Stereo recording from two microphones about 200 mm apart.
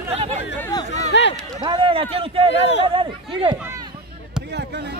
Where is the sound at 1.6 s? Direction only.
25° right (ahead or behind).